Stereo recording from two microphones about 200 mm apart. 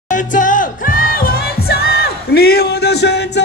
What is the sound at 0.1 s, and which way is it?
Music, 40° left (ahead or behind).